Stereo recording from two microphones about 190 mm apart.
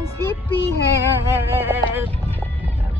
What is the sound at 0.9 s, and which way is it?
Speech, 15° right (ahead or behind).